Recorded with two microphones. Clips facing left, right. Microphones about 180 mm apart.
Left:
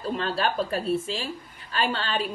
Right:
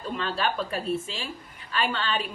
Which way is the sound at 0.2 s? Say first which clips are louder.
Even; 40° left (ahead or behind).